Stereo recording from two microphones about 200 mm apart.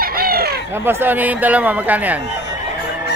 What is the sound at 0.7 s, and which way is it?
Speech, 10° right (ahead or behind).